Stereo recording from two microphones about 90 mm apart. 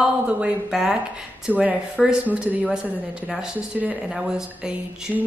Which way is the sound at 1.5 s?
20° right (ahead or behind).